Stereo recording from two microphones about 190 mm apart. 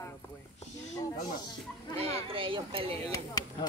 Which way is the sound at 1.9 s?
30° right (ahead or behind).